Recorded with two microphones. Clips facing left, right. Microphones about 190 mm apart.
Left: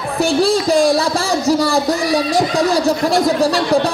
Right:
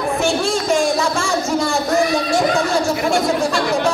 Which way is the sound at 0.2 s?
35° left (ahead or behind).